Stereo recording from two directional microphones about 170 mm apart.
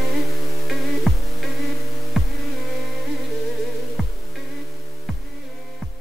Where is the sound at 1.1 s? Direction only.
Centre (ahead or behind).